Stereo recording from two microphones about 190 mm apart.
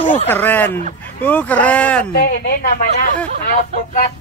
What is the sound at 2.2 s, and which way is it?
Speech, 50° left (ahead or behind).